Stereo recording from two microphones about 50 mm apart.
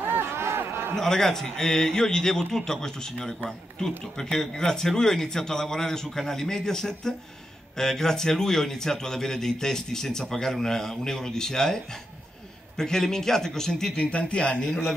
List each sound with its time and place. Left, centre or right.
0.0 s a sound: right
0.9 s a man's voice: centre
4.2 s a man's voice: centre
13.9 s a man's voice: centre